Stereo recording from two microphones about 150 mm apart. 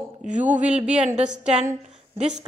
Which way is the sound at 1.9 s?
50° right (ahead or behind).